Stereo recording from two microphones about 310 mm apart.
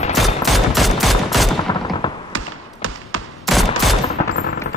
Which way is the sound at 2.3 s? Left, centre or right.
Right.